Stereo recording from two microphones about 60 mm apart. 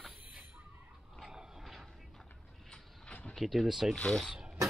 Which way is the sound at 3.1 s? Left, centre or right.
Left.